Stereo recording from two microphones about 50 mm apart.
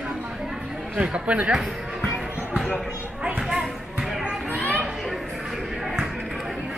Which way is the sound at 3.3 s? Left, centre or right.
Centre.